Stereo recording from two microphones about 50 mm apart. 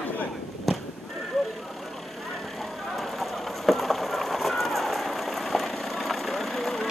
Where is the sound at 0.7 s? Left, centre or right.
Centre.